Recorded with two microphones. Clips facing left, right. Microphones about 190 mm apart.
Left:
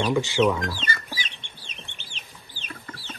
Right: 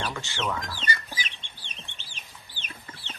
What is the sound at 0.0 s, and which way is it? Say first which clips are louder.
Speech: left 11 dB; 15° left (ahead or behind).